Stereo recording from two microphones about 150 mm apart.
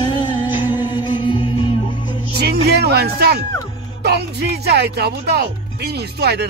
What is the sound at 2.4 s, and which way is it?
Music, 90° right.